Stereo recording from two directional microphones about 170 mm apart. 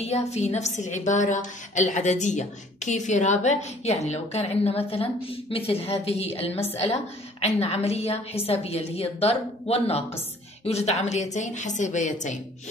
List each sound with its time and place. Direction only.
0.0 s a woman's voice: 40° left (ahead or behind)